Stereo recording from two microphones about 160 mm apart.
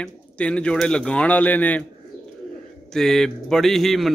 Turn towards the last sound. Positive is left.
turn(degrees=0)  # may be behind; listen again after turning